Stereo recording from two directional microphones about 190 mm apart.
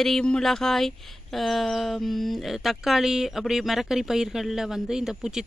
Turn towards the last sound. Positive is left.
turn(degrees=-5)  # may be behind; listen again after turning